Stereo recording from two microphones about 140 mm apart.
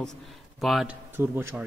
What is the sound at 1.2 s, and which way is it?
Speech, 15° right (ahead or behind).